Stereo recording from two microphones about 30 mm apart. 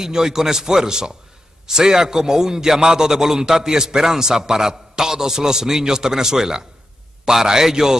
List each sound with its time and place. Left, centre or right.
0.0 s a man's voice: centre